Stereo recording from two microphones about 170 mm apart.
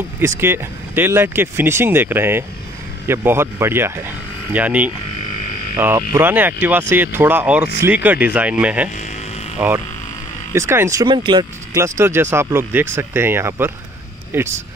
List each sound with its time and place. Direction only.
0.2 s speech: 15° right (ahead or behind)